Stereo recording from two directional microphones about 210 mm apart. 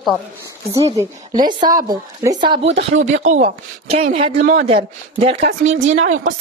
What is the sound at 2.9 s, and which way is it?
Speech, 35° right (ahead or behind).